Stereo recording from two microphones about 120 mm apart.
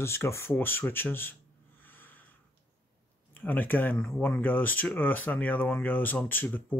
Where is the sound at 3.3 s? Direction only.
15° left (ahead or behind).